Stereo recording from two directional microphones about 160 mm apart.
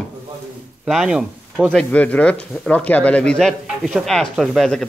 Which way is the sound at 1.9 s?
10° left (ahead or behind).